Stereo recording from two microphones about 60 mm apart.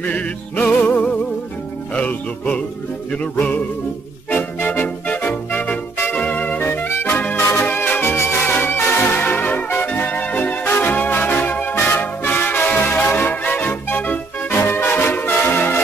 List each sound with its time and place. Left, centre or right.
0.0 s music: left
6.9 s music: left
8.5 s brass instrument: left
10.6 s music: left
14.6 s brass instrument: left